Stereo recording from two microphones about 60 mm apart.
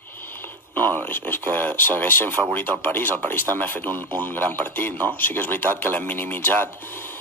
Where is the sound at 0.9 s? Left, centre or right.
Left.